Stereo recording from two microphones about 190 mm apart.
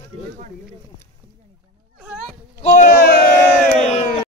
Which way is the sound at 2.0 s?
5° right (ahead or behind).